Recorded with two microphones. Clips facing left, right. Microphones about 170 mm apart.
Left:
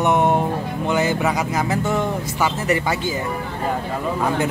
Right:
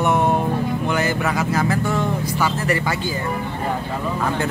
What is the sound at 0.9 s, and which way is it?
Speech, 20° left (ahead or behind).